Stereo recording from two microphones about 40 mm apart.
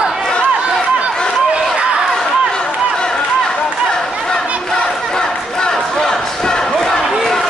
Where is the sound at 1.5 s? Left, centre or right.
Right.